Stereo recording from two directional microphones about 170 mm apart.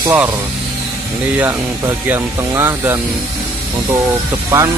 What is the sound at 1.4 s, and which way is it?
Speech, 10° right (ahead or behind).